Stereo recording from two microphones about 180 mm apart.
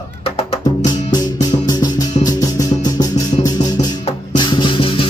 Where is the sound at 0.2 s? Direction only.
35° left (ahead or behind).